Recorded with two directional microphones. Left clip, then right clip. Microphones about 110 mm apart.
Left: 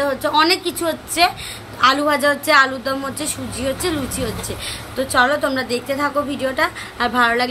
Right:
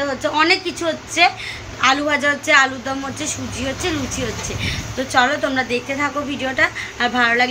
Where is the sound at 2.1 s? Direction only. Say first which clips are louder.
Left 1 dB; 35° left (ahead or behind).